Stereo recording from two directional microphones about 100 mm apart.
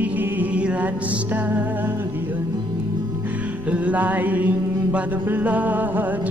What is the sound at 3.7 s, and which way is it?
Mantra, 15° right (ahead or behind).